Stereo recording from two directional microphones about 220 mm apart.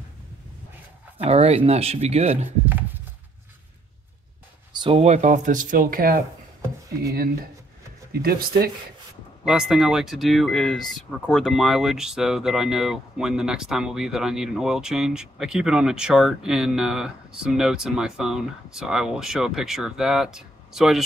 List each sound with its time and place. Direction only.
1.2 s speech: 25° right (ahead or behind)
4.7 s speech: 25° right (ahead or behind); by 6.2 s 40° right (ahead or behind)
8.1 s speech: 45° right (ahead or behind)
9.5 s speech: 5° right (ahead or behind)